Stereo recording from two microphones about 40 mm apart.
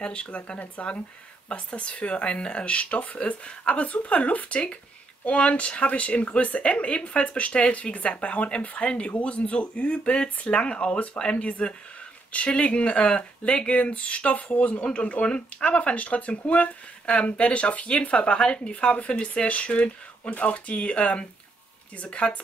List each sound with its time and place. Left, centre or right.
0.0 s speech: left